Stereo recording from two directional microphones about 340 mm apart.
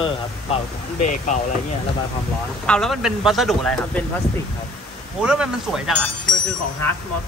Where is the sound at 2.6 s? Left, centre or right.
Centre.